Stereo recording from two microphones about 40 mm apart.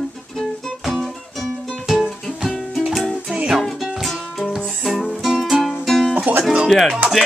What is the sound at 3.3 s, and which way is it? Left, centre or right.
Music, right.